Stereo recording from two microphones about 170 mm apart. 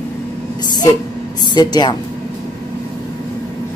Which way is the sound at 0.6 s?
25° left (ahead or behind).